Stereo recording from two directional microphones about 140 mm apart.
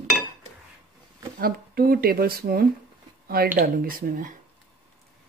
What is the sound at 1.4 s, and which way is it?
Speech, 90° right.